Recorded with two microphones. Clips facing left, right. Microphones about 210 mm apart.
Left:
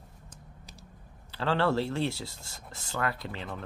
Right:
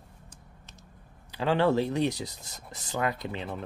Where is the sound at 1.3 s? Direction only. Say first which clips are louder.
Right 3 dB; 15° right (ahead or behind).